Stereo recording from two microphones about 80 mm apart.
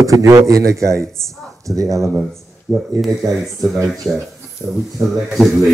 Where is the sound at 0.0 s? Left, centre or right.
Right.